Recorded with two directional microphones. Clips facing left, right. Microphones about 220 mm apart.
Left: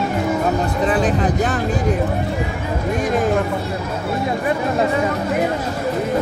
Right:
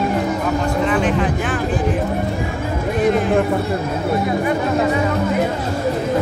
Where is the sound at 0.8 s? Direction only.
35° left (ahead or behind).